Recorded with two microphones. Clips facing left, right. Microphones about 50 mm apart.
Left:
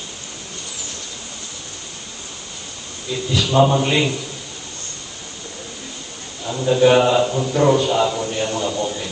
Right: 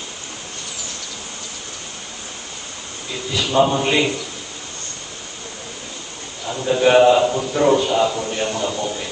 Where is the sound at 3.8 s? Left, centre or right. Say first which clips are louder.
Right 1 dB; centre.